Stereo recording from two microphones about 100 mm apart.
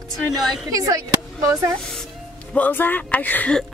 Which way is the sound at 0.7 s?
35° right (ahead or behind).